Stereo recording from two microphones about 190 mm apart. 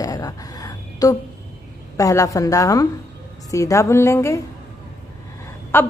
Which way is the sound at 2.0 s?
15° left (ahead or behind).